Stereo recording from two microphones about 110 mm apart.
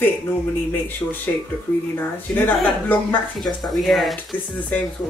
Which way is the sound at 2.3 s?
15° left (ahead or behind).